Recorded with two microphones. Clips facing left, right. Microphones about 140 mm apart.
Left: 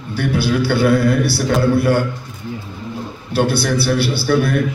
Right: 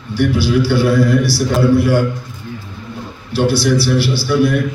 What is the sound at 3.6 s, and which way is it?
Speech, 55° left (ahead or behind).